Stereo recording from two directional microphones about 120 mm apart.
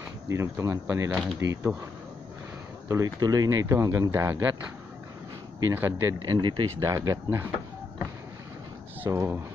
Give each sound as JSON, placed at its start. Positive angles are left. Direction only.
{"t": 0.3, "sound": "speech", "side_deg": -25}
{"t": 2.9, "sound": "speech", "side_deg": -30}
{"t": 5.7, "sound": "speech", "side_deg": -20}
{"t": 6.3, "sound": "speech", "side_deg": -40}
{"t": 6.8, "sound": "speech", "side_deg": -25}
{"t": 9.0, "sound": "speech", "side_deg": -20}